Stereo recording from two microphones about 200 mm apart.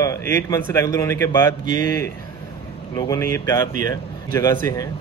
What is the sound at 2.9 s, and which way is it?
Speech, 15° left (ahead or behind).